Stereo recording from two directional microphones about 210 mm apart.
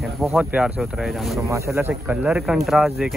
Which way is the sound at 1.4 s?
15° right (ahead or behind).